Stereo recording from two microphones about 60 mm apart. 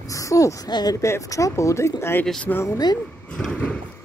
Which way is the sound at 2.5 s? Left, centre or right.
Left.